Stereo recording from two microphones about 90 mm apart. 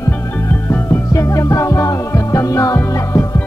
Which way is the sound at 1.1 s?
35° left (ahead or behind).